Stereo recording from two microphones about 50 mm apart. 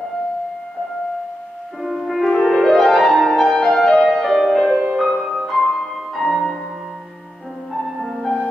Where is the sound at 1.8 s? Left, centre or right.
Centre.